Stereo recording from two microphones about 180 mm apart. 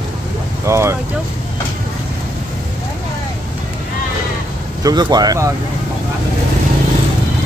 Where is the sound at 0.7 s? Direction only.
15° right (ahead or behind).